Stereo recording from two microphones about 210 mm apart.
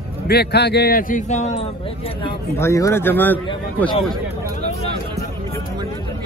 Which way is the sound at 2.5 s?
15° left (ahead or behind).